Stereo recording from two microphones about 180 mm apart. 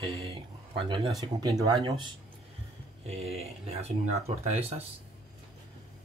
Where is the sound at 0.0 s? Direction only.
30° right (ahead or behind).